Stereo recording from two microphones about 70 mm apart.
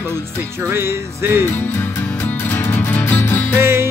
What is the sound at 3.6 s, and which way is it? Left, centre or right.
Music, right.